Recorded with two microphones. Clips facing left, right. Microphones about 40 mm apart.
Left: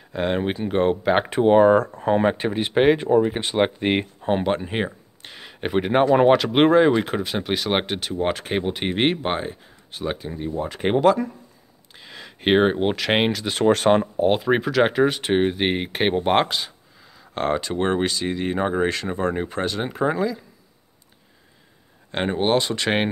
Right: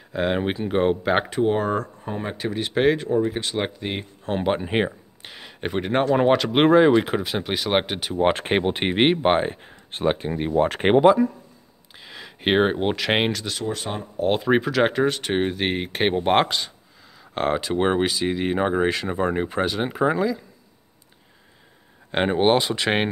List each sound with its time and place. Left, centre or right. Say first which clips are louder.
0.1 s speech: even; centre
1.3 s speech: left 7 dB; left
2.0 s speech: left 11 dB; left
2.2 s speech: left 7 dB; left
2.5 s speech: right 1 dB; centre
4.4 s speech: right 1 dB; centre
8.3 s speech: right 4 dB; right; by 9.3 s centre
9.3 s speech: right 6 dB; right
10.3 s speech: right 6 dB; right
12.0 s speech: left 1 dB; centre
13.7 s speech: left 14 dB; left
14.2 s speech: left 1 dB; centre
22.1 s speech: right 2 dB; centre